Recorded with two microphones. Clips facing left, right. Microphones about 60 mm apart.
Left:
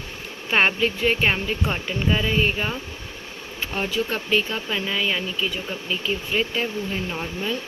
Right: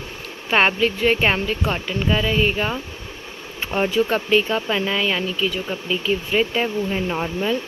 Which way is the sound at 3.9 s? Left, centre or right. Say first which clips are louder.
Right 4 dB; centre.